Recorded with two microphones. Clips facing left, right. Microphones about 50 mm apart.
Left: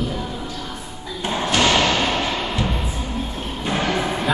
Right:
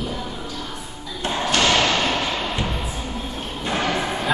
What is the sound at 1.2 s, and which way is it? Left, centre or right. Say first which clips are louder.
Thump: left 1 dB; centre.